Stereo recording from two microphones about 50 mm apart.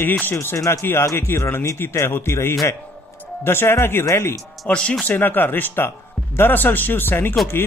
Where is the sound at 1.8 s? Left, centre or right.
Left.